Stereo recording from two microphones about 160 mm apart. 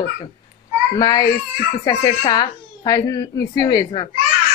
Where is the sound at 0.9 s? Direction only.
25° left (ahead or behind).